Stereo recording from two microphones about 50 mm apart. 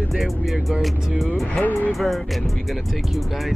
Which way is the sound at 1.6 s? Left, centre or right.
Left.